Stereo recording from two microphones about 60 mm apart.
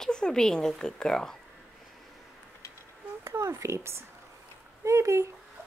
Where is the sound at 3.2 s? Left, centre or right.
Right.